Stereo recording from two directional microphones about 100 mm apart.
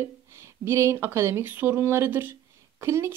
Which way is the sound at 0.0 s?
25° right (ahead or behind).